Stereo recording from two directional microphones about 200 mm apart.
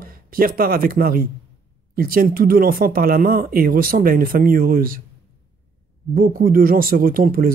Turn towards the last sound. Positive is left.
turn(degrees=-45)  # may be behind; listen again after turning